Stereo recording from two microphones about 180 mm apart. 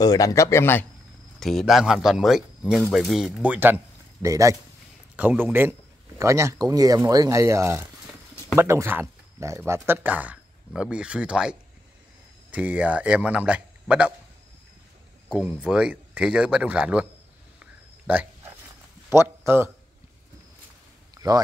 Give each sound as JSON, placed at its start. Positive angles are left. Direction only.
{"t": 0.0, "sound": "speech", "side_deg": 20}
{"t": 1.4, "sound": "a man's voice", "side_deg": 0}
{"t": 15.2, "sound": "speech", "side_deg": -5}
{"t": 19.0, "sound": "speech", "side_deg": -15}